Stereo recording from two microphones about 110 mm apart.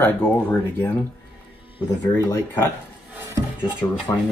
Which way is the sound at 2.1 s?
25° left (ahead or behind).